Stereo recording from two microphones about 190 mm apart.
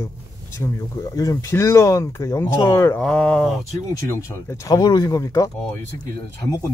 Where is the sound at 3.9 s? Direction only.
15° left (ahead or behind).